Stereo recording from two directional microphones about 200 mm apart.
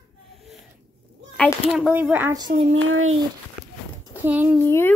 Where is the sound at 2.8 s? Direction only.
85° right.